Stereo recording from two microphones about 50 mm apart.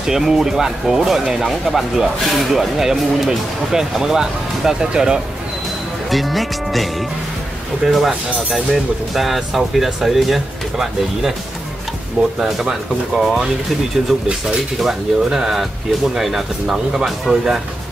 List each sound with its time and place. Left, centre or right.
0.0 s speech: centre
6.0 s speech: centre
8.1 s speech: right
8.7 s speech: centre
12.4 s speech: centre
14.8 s speech: centre